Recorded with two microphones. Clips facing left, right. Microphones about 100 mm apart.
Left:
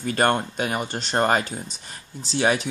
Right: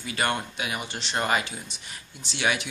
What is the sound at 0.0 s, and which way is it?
Speech, 45° left (ahead or behind).